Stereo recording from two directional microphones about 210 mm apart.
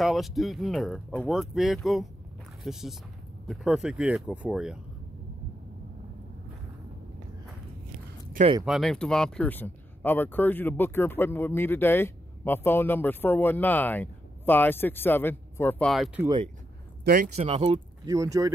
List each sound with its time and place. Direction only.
0.0 s speech: centre (ahead or behind)
8.6 s speech: centre (ahead or behind)
17.0 s speech: 45° right (ahead or behind)
17.4 s speech: 25° right (ahead or behind)
18.0 s speech: 15° right (ahead or behind)